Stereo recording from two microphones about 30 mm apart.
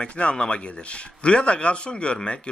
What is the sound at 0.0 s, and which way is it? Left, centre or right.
Speech, left.